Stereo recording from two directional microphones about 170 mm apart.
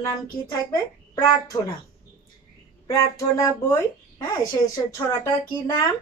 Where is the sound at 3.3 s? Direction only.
20° left (ahead or behind).